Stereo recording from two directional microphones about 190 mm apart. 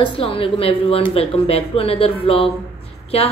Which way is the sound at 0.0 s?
30° left (ahead or behind).